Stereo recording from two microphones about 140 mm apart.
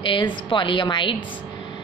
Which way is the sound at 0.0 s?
35° left (ahead or behind).